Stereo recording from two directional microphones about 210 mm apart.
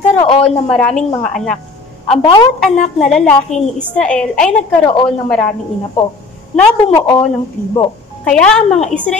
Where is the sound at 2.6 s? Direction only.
Centre (ahead or behind).